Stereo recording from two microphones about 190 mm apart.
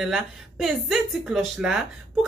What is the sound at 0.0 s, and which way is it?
Speech, centre (ahead or behind).